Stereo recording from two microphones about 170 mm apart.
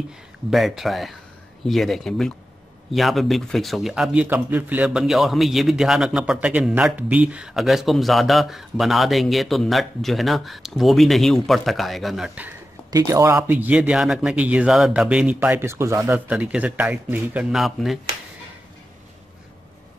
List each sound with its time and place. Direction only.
0.5 s speech: centre (ahead or behind)
12.9 s speech: 20° right (ahead or behind); by 17.9 s centre (ahead or behind)